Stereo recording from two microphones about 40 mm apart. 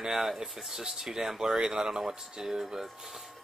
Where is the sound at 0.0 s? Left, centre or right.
Centre.